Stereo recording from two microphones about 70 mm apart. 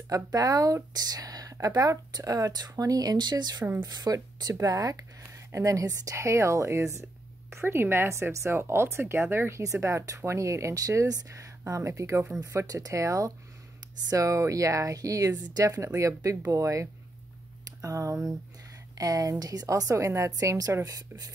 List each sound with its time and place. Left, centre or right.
0.1 s a woman's voice: right
3.8 s speech: right
4.6 s speech: right
9.6 s a woman's voice: right